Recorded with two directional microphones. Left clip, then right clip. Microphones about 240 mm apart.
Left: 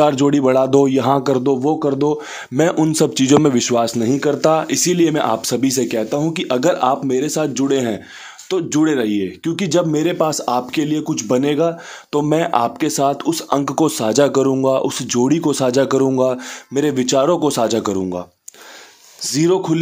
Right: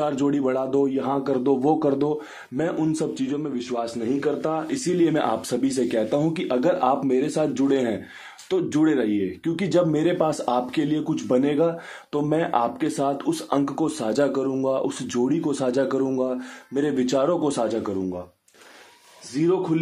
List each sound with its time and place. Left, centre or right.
0.0 s speech: left
2.5 s speech: left
19.3 s speech: left